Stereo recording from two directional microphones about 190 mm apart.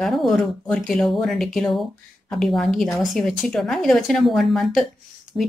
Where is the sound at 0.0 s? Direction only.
Centre (ahead or behind).